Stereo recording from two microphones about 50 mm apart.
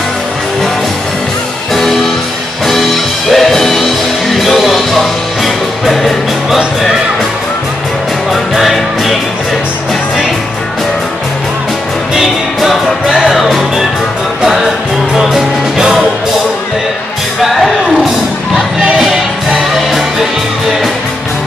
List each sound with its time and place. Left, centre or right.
1.7 s music: centre
8.3 s music: centre
12.2 s music: centre
13.0 s music: centre
13.3 s music: centre
17.4 s a sound: centre
18.0 s music: centre